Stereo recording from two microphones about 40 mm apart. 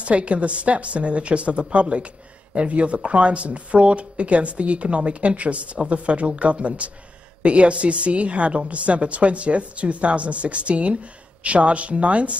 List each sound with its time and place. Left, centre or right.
0.0 s a woman's voice: right